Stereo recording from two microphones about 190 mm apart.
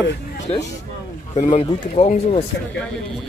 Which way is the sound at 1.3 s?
35° left (ahead or behind).